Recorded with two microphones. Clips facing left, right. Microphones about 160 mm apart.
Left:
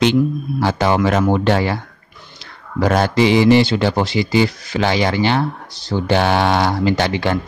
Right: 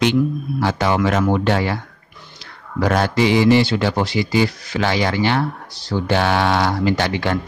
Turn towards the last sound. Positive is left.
turn(degrees=25)  # may be behind; listen again after turning